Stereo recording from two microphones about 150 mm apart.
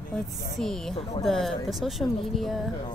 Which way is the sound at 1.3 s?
Centre (ahead or behind).